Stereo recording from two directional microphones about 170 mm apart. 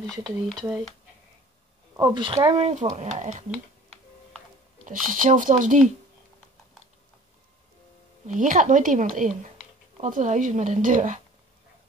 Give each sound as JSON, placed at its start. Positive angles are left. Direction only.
{"t": 0.1, "sound": "speech", "side_deg": 5}
{"t": 2.0, "sound": "speech", "side_deg": -30}
{"t": 5.0, "sound": "speech", "side_deg": -50}
{"t": 8.3, "sound": "speech", "side_deg": -50}